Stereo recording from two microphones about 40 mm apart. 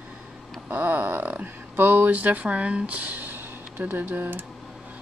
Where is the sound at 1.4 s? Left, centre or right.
Right.